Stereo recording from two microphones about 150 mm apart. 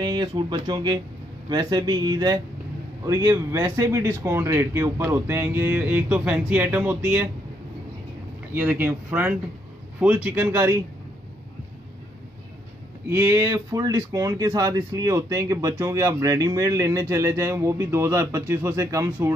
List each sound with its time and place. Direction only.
0.0 s speech: 30° right (ahead or behind); by 7.2 s 15° right (ahead or behind)
8.5 s speech: 15° right (ahead or behind)
13.1 s speech: 20° right (ahead or behind)